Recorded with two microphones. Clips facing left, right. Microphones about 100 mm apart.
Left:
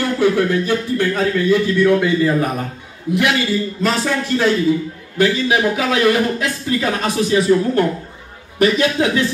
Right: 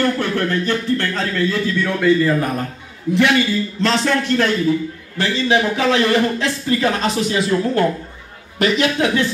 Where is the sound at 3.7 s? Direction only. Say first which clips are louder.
Right 4 dB; 10° left (ahead or behind).